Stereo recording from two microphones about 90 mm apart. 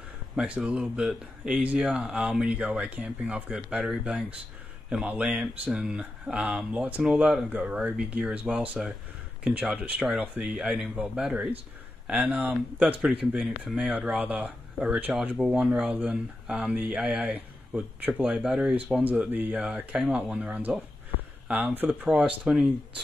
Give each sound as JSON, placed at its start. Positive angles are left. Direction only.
{"t": 0.4, "sound": "speech", "side_deg": -10}
{"t": 13.4, "sound": "speech", "side_deg": 0}
{"t": 13.8, "sound": "speech", "side_deg": -15}
{"t": 19.0, "sound": "speech", "side_deg": -20}
{"t": 22.1, "sound": "speech", "side_deg": -10}